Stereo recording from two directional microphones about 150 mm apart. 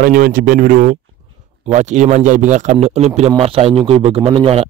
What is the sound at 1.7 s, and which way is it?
Speech, 50° right (ahead or behind).